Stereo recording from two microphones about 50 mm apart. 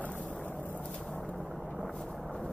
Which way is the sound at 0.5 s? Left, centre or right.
Left.